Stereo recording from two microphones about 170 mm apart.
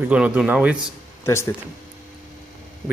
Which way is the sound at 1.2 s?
15° left (ahead or behind).